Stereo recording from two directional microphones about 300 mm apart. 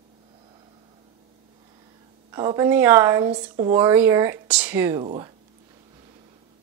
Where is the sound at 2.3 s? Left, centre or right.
Centre.